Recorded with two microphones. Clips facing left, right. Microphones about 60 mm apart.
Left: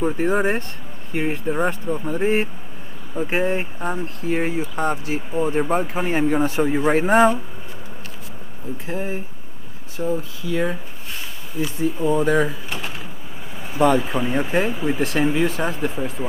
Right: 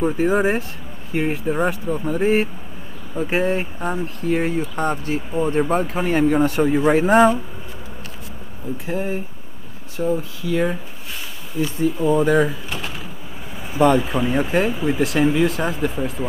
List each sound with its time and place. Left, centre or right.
0.0 s speech: centre
8.9 s speech: centre
11.6 s speech: centre
12.1 s speech: centre